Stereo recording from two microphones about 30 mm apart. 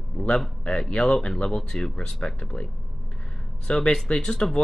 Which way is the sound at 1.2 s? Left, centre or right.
Left.